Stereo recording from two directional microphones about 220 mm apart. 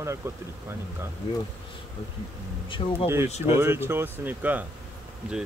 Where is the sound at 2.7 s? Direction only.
20° left (ahead or behind).